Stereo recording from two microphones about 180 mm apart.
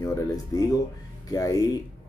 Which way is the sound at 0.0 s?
15° left (ahead or behind).